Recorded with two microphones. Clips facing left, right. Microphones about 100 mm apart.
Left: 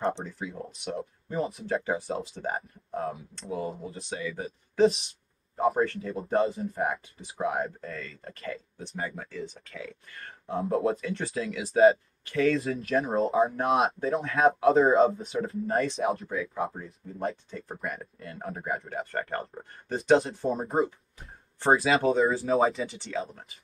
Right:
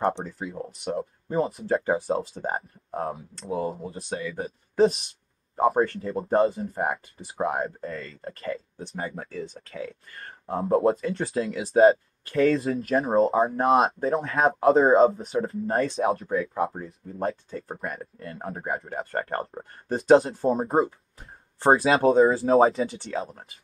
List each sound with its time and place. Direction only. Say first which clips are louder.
0.4 s speech: right 3 dB; 45° right (ahead or behind)